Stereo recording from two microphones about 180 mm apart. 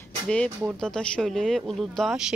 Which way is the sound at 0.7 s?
5° left (ahead or behind).